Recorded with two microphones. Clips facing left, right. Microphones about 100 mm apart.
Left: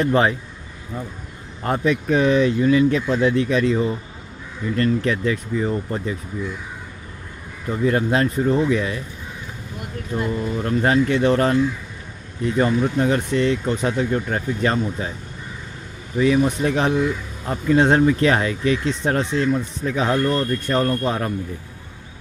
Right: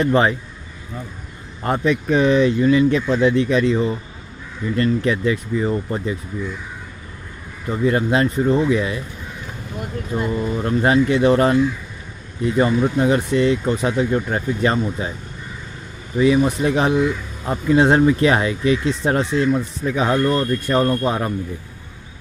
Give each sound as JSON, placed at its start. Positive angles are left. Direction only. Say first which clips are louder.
{"t": 0.0, "sound": "speech", "louder": "right 1 dB", "side_deg": 0}
{"t": 1.6, "sound": "speech", "louder": "right 1 dB", "side_deg": 0}
{"t": 7.6, "sound": "speech", "louder": "right 1 dB", "side_deg": -5}
{"t": 9.8, "sound": "speech", "louder": "right 2 dB", "side_deg": -20}
{"t": 16.2, "sound": "speech", "louder": "right 2 dB", "side_deg": -5}